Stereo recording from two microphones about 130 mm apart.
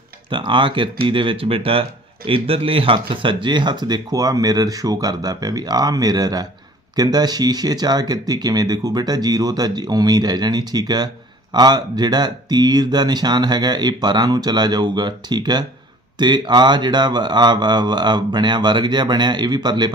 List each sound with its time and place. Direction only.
0.3 s speech: 40° right (ahead or behind)